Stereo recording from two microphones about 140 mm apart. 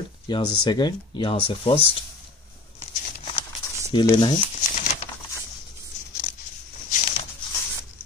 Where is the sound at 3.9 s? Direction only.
30° left (ahead or behind).